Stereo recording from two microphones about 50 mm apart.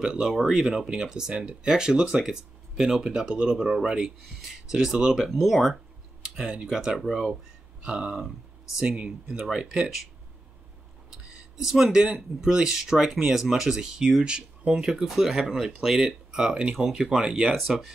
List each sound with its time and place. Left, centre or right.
0.0 s speech: centre
6.3 s speech: centre
7.0 s speech: centre
7.8 s speech: right
9.5 s speech: centre
11.5 s speech: centre